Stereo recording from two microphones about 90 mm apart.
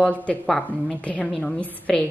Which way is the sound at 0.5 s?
5° left (ahead or behind).